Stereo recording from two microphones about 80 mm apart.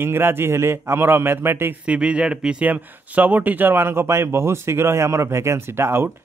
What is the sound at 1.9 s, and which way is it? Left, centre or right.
Speech, centre.